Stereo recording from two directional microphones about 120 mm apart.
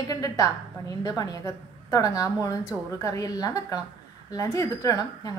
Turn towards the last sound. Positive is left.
turn(degrees=30)  # may be behind; listen again after turning